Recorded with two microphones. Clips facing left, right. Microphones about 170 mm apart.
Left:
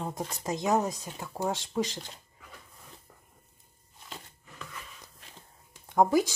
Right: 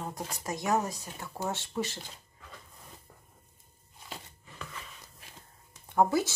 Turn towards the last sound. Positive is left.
turn(degrees=15)  # may be behind; listen again after turning